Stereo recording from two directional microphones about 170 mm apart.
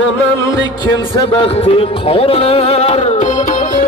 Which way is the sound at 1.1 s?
35° left (ahead or behind).